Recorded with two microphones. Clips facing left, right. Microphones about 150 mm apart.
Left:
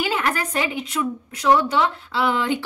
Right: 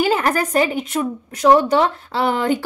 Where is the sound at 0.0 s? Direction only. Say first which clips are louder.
Right 6 dB; 40° right (ahead or behind).